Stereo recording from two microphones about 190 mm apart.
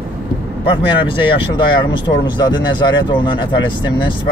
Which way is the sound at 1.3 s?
25° left (ahead or behind).